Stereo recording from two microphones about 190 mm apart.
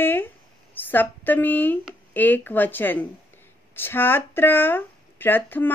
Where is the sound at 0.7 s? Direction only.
10° left (ahead or behind).